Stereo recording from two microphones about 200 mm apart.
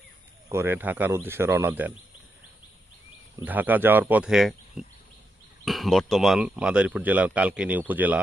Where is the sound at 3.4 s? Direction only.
10° right (ahead or behind).